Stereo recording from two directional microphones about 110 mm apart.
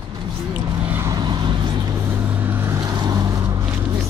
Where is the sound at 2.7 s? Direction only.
35° right (ahead or behind).